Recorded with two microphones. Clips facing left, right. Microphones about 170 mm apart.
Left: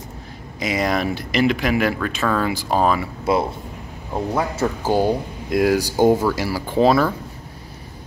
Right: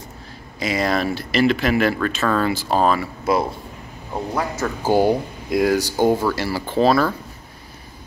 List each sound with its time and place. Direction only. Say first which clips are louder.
0.6 s speech: even; 15° left (ahead or behind)
4.1 s a man's voice: left 2 dB; 5° left (ahead or behind)
4.8 s speech: right 3 dB; 10° right (ahead or behind)
5.5 s speech: even; 5° left (ahead or behind)